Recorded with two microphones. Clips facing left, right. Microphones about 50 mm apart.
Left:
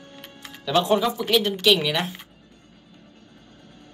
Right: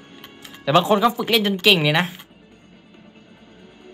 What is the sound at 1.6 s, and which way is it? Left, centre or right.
Speech, right.